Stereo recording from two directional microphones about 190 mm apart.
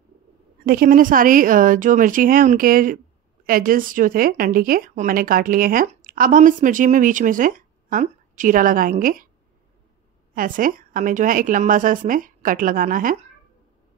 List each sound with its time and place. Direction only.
0.7 s a woman's voice: 50° right (ahead or behind)
10.3 s a woman's voice: 45° right (ahead or behind)